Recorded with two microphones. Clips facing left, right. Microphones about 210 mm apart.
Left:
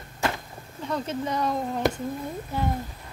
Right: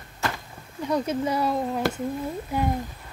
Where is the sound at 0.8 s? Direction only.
10° right (ahead or behind).